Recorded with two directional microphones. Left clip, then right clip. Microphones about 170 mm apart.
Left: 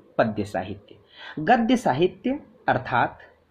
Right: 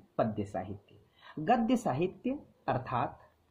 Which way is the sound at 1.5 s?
25° right (ahead or behind).